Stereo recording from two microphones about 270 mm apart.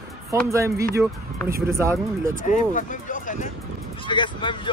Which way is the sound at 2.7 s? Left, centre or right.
Left.